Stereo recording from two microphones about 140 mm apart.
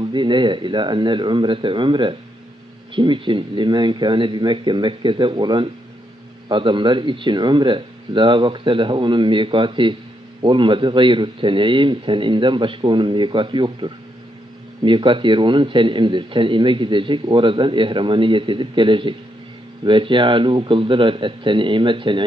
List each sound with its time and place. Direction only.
0.0 s a man's voice: 35° right (ahead or behind)